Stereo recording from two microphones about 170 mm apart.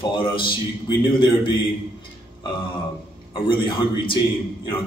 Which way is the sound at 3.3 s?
30° left (ahead or behind).